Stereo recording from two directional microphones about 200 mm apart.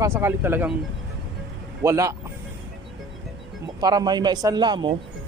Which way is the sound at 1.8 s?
15° right (ahead or behind).